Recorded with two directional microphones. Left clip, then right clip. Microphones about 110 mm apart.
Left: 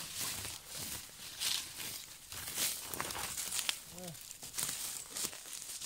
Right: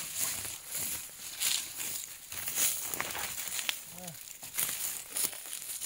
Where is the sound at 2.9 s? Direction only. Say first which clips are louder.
Right 4 dB; 15° left (ahead or behind).